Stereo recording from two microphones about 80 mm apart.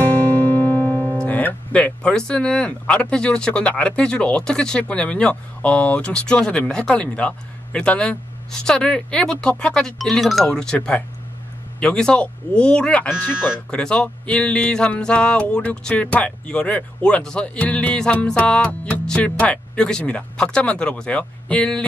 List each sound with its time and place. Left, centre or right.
0.0 s music: left
1.2 s speech: left